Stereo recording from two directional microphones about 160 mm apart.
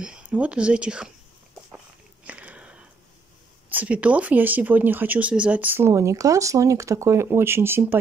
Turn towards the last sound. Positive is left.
turn(degrees=-15)  # may be behind; listen again after turning